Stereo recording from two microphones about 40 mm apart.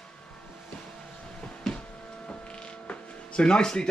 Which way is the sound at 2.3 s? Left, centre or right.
Left.